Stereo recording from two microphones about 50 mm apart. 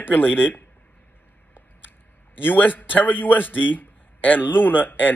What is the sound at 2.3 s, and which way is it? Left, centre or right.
A man's voice, left.